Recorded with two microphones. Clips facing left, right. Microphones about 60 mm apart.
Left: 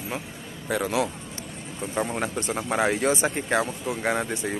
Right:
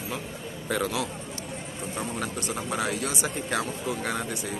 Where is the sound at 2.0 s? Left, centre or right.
Left.